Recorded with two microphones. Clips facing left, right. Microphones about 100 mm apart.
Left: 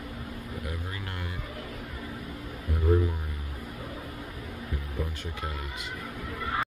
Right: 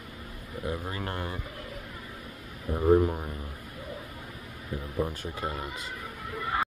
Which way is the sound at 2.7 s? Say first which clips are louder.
Right 4 dB; 35° right (ahead or behind).